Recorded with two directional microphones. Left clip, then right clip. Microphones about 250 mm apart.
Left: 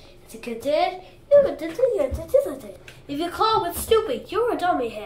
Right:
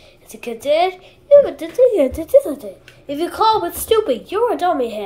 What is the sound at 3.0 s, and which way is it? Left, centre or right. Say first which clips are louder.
A woman's voice: right 7 dB; centre.